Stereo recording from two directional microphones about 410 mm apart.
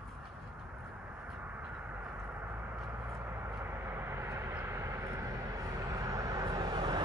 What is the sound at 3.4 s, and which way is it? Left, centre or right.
Vehicle, centre.